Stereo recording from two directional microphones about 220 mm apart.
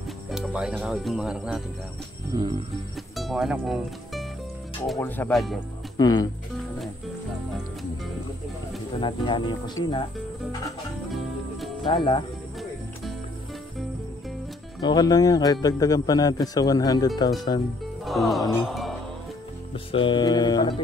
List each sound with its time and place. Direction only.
0.3 s speech: 5° right (ahead or behind)
2.3 s music: 20° right (ahead or behind)
3.2 s a man's voice: centre (ahead or behind)
5.9 s a man's voice: 15° left (ahead or behind)
8.9 s speech: 20° left (ahead or behind)
11.9 s speech: 20° left (ahead or behind)
14.8 s a man's voice: 20° left (ahead or behind)
18.0 s music: centre (ahead or behind)
19.7 s speech: 25° left (ahead or behind)